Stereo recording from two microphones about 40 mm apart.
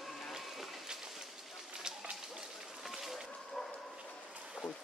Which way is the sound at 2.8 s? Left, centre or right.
Centre.